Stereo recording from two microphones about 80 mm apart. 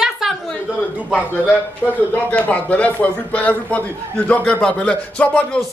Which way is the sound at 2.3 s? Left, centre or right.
Centre.